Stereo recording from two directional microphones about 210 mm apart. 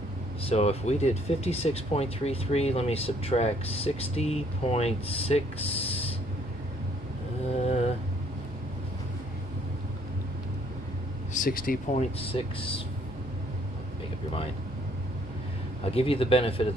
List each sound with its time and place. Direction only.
0.4 s speech: 30° left (ahead or behind)
11.3 s speech: 40° left (ahead or behind)
12.2 s speech: 25° left (ahead or behind)
15.8 s speech: 30° left (ahead or behind)